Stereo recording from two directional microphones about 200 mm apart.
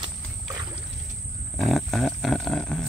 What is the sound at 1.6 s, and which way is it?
Roaring cats, centre (ahead or behind).